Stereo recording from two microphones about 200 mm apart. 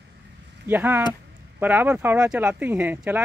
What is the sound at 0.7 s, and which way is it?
Speech, 10° right (ahead or behind).